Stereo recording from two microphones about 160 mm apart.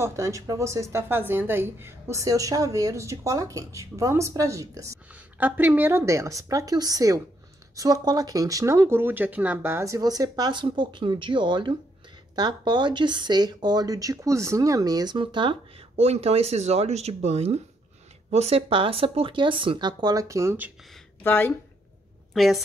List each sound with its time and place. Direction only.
0.0 s speech: 20° right (ahead or behind)
21.2 s speech: 15° left (ahead or behind)
22.3 s a woman's voice: centre (ahead or behind)